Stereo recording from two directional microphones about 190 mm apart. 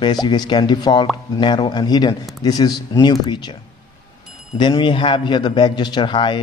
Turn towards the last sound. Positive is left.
turn(degrees=25)  # may be behind; listen again after turning